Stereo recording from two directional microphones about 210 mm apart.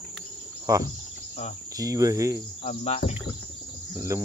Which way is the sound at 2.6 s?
30° left (ahead or behind).